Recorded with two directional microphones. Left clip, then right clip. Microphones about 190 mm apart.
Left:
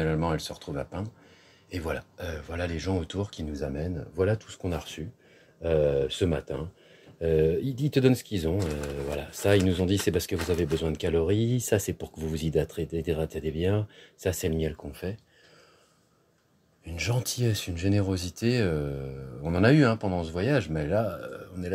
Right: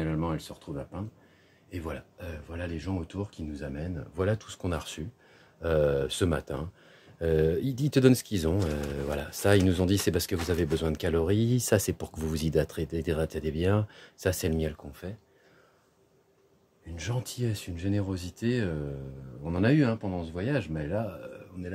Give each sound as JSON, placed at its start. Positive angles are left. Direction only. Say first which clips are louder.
{"t": 0.0, "sound": "speech", "louder": "left 4 dB", "side_deg": -5}
{"t": 4.1, "sound": "speech", "louder": "left 3 dB", "side_deg": -20}
{"t": 14.9, "sound": "speech", "louder": "left 6 dB", "side_deg": -5}
{"t": 16.9, "sound": "speech", "louder": "left 6 dB", "side_deg": -5}